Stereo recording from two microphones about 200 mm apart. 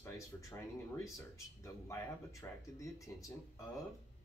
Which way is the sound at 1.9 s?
15° left (ahead or behind).